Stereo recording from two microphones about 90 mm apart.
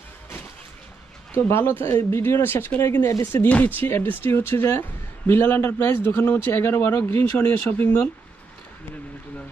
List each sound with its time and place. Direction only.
1.3 s a man's voice: 25° left (ahead or behind)